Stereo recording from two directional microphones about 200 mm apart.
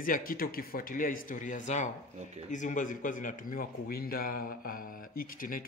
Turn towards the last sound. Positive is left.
turn(degrees=45)  # may be behind; listen again after turning